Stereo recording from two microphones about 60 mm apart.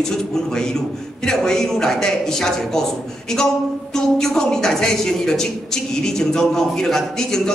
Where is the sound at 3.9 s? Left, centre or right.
Centre.